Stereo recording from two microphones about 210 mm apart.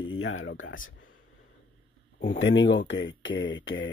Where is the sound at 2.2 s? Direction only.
65° left (ahead or behind).